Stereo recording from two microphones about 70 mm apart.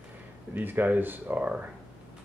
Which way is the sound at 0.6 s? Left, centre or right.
Right.